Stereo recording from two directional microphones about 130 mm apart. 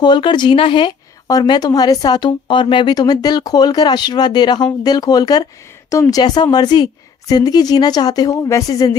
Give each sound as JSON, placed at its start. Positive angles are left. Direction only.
{"t": 0.0, "sound": "speech", "side_deg": 35}